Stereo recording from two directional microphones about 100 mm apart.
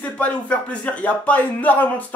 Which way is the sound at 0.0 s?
15° left (ahead or behind).